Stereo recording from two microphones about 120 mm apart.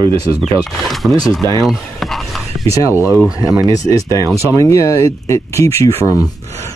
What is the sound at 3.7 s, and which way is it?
Speech, 30° left (ahead or behind).